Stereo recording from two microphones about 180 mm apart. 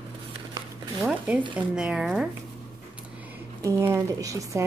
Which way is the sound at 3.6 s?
15° right (ahead or behind).